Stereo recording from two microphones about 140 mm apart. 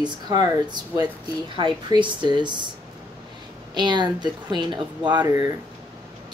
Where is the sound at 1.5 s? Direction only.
35° right (ahead or behind).